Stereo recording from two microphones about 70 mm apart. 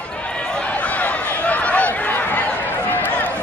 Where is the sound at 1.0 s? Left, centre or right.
Centre.